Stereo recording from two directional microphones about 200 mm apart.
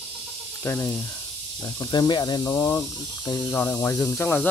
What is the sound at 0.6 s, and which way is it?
Speech, 10° left (ahead or behind).